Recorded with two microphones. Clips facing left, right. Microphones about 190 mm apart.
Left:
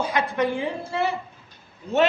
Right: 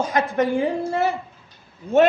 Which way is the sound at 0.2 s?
45° right (ahead or behind).